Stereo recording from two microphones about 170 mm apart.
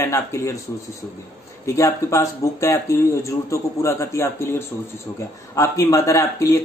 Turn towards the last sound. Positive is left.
turn(degrees=20)  # may be behind; listen again after turning